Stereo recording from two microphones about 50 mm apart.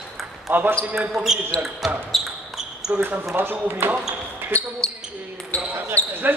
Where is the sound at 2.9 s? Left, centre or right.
Right.